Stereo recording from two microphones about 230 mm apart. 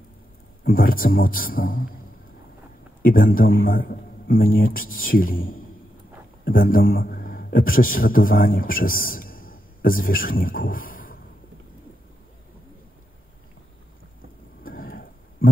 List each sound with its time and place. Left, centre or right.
0.7 s a man's voice: left
3.0 s a man's voice: left
14.6 s a sound: left